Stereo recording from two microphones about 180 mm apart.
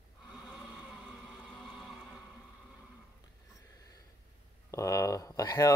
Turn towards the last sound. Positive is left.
turn(degrees=20)  # may be behind; listen again after turning